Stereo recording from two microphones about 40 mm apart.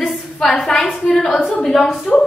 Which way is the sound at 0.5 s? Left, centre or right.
Centre.